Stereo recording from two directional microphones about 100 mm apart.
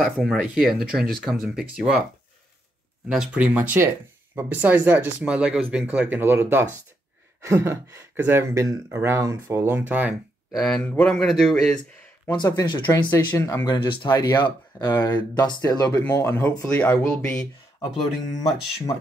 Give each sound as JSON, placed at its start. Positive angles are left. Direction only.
{"t": 0.0, "sound": "speech", "side_deg": 5}
{"t": 3.1, "sound": "speech", "side_deg": -10}
{"t": 10.5, "sound": "speech", "side_deg": 0}
{"t": 10.8, "sound": "speech", "side_deg": 15}
{"t": 11.1, "sound": "speech", "side_deg": 5}
{"t": 12.3, "sound": "speech", "side_deg": 45}
{"t": 12.9, "sound": "speech", "side_deg": 30}
{"t": 13.7, "sound": "speech", "side_deg": 60}
{"t": 14.1, "sound": "speech", "side_deg": 45}
{"t": 16.1, "sound": "speech", "side_deg": 30}
{"t": 16.6, "sound": "speech", "side_deg": 15}